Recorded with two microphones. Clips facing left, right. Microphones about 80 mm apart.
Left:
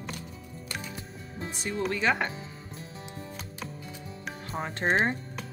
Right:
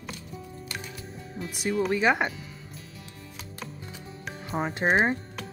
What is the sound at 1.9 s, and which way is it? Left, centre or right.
Speech, centre.